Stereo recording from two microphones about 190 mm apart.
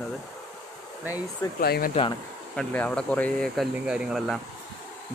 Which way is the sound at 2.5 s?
5° left (ahead or behind).